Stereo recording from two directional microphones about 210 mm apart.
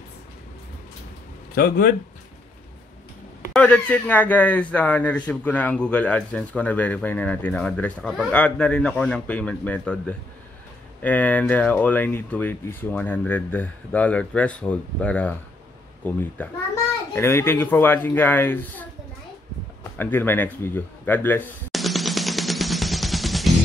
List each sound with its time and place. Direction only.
1.5 s speech: 45° left (ahead or behind)
3.5 s speech: 5° left (ahead or behind)
19.8 s a sound: 10° left (ahead or behind)